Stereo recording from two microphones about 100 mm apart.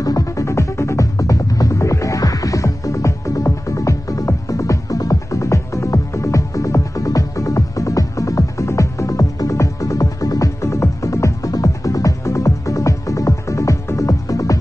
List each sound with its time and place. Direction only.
0.0 s music: 35° left (ahead or behind)